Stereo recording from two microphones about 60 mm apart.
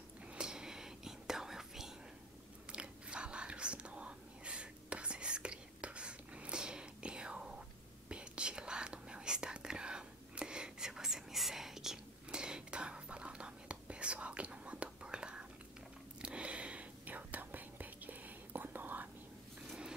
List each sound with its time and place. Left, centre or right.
0.3 s whispering: centre; by 19.0 s right